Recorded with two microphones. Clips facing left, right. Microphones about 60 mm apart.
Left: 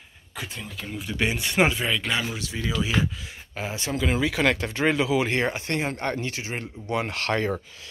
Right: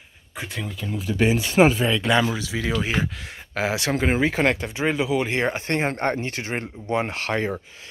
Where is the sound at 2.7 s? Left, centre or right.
Right.